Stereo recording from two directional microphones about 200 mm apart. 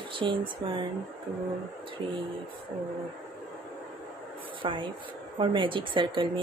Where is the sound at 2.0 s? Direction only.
25° right (ahead or behind).